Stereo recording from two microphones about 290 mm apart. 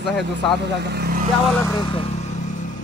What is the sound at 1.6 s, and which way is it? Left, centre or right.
Vehicle, centre.